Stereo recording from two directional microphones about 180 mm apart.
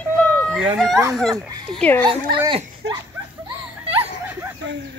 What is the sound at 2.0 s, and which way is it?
Speech, 25° right (ahead or behind).